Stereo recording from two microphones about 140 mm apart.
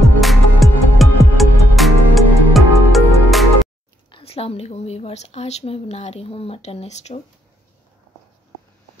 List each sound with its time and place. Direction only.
0.2 s music: centre (ahead or behind)
4.1 s a woman's voice: 45° left (ahead or behind)